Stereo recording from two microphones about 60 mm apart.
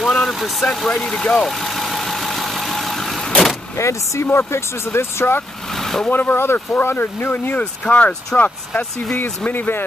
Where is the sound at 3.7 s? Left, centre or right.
Left.